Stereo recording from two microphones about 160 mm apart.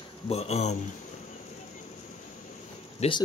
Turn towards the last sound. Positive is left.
turn(degrees=45)  # may be behind; listen again after turning